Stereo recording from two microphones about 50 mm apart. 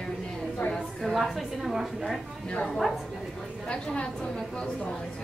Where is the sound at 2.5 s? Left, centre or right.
Centre.